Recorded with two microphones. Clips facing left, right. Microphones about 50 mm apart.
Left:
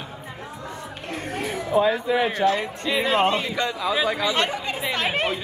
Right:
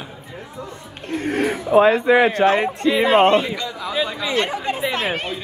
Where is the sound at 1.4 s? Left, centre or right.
Right.